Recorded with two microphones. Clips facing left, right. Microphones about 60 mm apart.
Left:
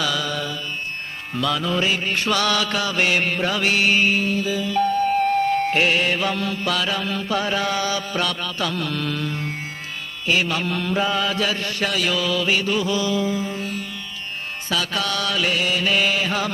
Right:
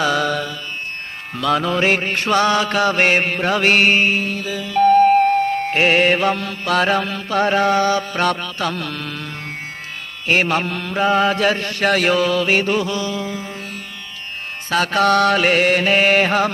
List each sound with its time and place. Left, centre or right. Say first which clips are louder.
0.0 s mantra: right 6 dB; right
4.3 s music: left 1 dB; right
5.1 s mantra: right 4 dB; right
14.7 s mantra: right 9 dB; right